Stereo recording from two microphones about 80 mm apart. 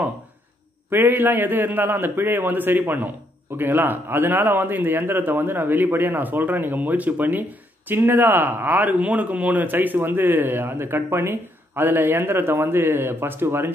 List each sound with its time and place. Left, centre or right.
0.8 s speech: right